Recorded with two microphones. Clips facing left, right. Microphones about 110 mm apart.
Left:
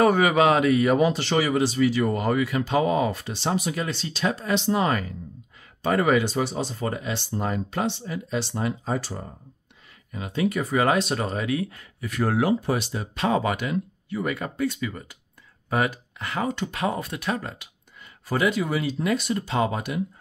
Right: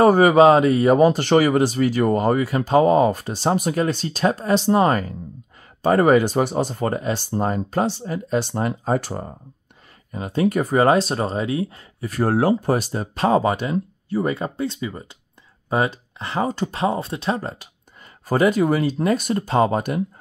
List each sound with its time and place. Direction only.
0.0 s speech: 35° right (ahead or behind)